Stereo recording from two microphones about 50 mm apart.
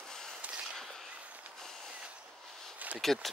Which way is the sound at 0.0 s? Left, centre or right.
Centre.